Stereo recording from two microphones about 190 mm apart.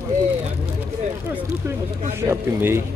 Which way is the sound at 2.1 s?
15° right (ahead or behind).